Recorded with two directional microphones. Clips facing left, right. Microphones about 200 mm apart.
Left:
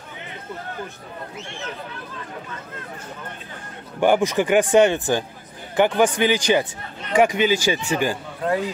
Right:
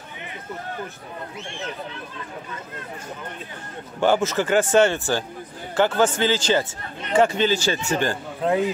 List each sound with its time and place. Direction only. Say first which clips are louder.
4.0 s speech: left 2 dB; 15° left (ahead or behind)